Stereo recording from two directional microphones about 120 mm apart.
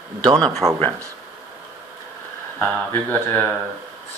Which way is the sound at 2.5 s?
20° left (ahead or behind).